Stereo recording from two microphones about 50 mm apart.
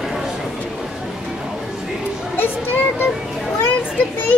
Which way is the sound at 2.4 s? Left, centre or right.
Left.